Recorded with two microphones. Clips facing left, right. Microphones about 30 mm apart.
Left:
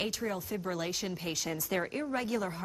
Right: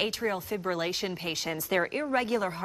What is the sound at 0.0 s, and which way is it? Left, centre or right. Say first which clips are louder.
Speech: right 5 dB; right.